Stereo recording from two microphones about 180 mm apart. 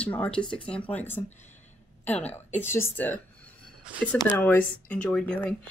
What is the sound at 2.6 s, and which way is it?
Speech, 15° left (ahead or behind).